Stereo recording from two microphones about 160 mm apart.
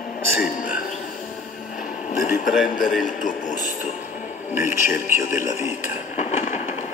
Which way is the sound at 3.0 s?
50° left (ahead or behind).